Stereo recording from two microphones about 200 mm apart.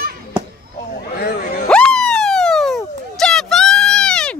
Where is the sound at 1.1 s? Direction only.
50° left (ahead or behind).